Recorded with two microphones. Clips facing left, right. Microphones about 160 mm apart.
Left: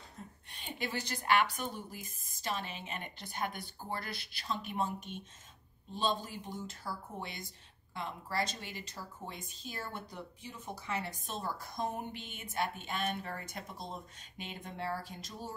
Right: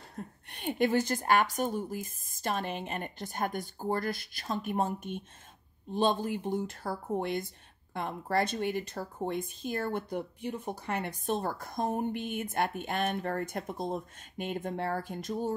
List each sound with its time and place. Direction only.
0.5 s speech: 60° right (ahead or behind)